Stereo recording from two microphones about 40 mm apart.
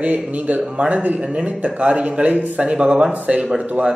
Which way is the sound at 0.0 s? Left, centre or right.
Right.